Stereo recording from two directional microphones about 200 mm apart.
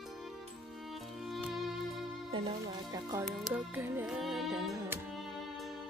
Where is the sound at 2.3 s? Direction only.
25° right (ahead or behind).